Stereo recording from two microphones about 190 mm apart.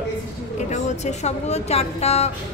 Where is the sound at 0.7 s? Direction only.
35° left (ahead or behind).